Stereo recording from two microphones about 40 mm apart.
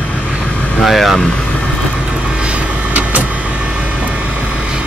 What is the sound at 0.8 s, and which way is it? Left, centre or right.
Speech, centre.